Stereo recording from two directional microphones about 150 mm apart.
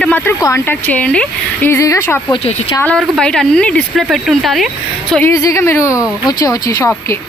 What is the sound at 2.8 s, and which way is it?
Speech, 5° left (ahead or behind).